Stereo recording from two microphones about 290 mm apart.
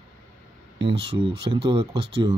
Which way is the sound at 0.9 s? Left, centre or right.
Centre.